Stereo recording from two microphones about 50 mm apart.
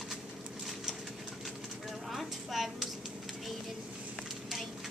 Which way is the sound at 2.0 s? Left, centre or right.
Centre.